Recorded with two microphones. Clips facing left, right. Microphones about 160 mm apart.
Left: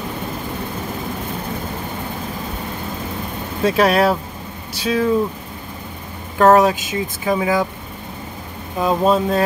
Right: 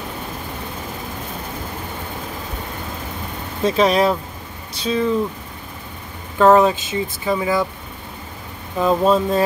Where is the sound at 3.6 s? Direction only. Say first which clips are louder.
Left 1 dB; 5° left (ahead or behind).